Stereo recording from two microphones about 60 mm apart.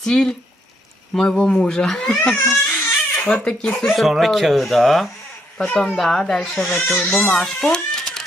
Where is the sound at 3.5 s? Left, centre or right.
Centre.